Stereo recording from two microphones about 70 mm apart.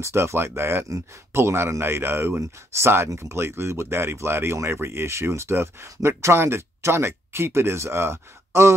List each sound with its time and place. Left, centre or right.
0.0 s speech: right